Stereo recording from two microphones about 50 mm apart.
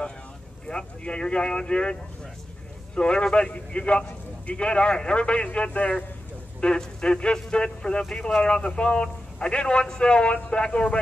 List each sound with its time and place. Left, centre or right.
0.7 s a man's voice: centre